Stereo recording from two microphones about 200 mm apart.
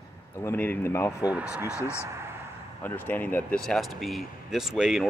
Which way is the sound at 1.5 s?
10° right (ahead or behind).